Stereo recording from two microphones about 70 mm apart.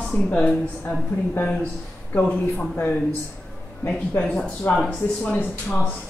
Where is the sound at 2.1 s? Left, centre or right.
Left.